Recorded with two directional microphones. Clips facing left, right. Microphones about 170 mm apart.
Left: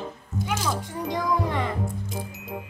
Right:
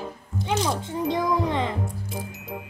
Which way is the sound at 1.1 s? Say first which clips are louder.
Right 2 dB; 20° right (ahead or behind).